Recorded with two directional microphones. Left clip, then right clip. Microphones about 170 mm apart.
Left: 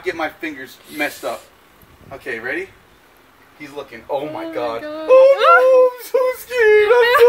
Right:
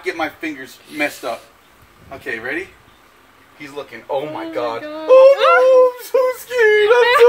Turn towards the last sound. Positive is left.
turn(degrees=15)  # may be behind; listen again after turning